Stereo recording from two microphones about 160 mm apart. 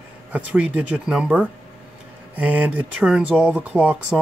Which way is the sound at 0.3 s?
10° right (ahead or behind).